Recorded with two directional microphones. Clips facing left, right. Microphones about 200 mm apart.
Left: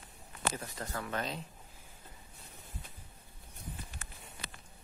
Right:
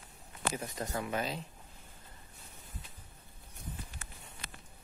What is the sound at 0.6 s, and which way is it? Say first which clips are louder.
Speech: right 3 dB; 15° right (ahead or behind).